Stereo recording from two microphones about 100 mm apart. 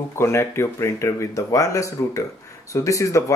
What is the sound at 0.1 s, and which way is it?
Speech, 25° left (ahead or behind).